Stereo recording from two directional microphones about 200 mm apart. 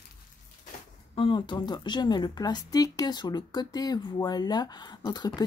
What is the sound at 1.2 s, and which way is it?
Speech, 25° left (ahead or behind).